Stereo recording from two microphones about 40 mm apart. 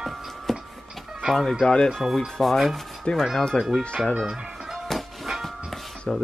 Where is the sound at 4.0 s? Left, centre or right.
Centre.